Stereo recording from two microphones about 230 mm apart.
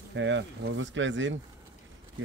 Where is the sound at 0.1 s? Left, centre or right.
Right.